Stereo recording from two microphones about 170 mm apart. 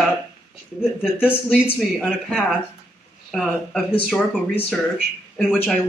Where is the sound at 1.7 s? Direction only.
Centre (ahead or behind).